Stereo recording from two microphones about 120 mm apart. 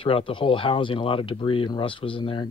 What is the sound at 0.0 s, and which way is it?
Speech, 50° left (ahead or behind).